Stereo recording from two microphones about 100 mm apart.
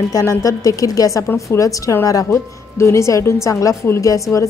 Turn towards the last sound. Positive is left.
turn(degrees=30)  # may be behind; listen again after turning